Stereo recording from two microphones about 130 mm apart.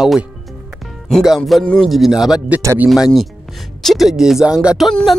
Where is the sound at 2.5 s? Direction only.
20° right (ahead or behind).